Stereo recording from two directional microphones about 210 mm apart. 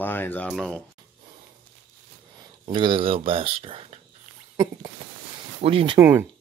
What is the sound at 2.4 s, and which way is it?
Speech, 25° right (ahead or behind).